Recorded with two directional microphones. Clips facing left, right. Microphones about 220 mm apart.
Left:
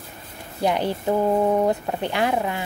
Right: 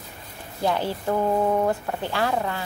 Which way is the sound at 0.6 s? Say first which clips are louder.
Left 2 dB; 15° left (ahead or behind).